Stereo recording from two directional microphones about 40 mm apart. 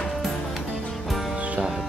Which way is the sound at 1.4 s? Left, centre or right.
Right.